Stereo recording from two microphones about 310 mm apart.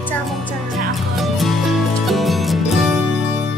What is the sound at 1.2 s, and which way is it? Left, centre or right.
Music, centre.